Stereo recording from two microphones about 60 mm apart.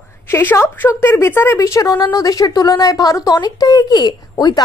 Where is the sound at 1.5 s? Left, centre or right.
Left.